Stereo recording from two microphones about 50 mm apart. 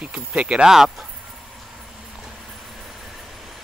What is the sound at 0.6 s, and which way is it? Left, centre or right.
Speech, centre.